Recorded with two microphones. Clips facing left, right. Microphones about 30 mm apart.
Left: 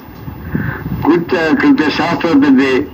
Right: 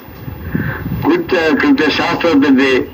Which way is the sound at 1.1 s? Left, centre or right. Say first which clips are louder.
Even; right.